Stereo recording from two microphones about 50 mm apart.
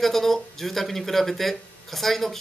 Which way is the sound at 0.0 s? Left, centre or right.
Centre.